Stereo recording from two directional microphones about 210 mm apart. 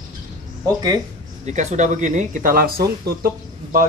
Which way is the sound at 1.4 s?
35° right (ahead or behind).